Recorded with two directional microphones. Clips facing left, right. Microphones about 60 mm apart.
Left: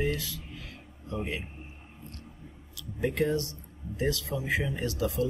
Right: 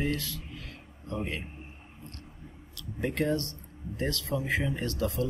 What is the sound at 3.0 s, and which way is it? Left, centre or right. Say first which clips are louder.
Speech: left 1 dB; centre.